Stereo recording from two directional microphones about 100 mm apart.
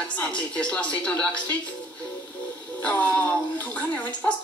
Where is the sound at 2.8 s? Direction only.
15° left (ahead or behind).